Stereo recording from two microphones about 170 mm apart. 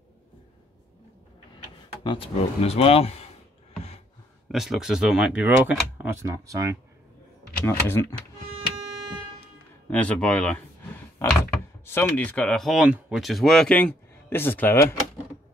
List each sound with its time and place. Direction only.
2.0 s speech: 30° left (ahead or behind)
4.5 s speech: centre (ahead or behind)
6.2 s speech: 20° right (ahead or behind)
7.6 s speech: 15° left (ahead or behind)
9.8 s speech: 10° left (ahead or behind)
11.2 s a sound: 15° left (ahead or behind)
11.8 s speech: 15° left (ahead or behind)